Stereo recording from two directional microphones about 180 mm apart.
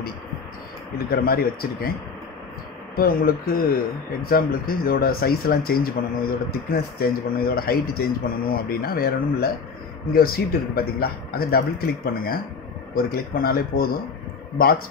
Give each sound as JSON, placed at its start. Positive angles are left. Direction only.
{"t": 0.9, "sound": "speech", "side_deg": 60}
{"t": 3.0, "sound": "speech", "side_deg": 55}